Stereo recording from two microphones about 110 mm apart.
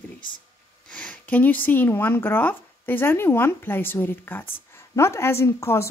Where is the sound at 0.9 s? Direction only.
10° left (ahead or behind).